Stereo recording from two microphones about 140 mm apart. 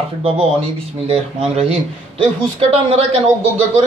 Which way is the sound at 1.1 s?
50° right (ahead or behind).